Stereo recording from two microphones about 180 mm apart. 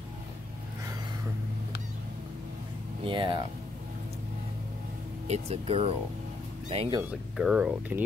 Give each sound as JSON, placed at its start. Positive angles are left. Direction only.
{"t": 3.1, "sound": "speech", "side_deg": -25}
{"t": 5.3, "sound": "speech", "side_deg": -35}
{"t": 7.3, "sound": "speech", "side_deg": -5}